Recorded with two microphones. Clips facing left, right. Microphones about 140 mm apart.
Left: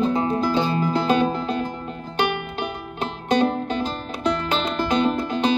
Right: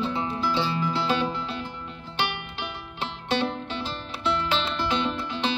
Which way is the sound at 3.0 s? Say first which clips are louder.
Left 7 dB; 45° left (ahead or behind).